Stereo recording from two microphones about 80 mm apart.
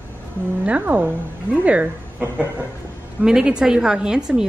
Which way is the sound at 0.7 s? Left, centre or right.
Right.